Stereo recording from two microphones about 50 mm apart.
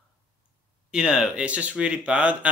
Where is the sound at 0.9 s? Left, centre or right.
Centre.